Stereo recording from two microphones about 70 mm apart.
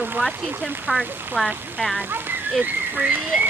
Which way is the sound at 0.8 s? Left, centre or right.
Centre.